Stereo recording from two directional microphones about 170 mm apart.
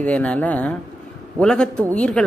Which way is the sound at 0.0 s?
5° left (ahead or behind).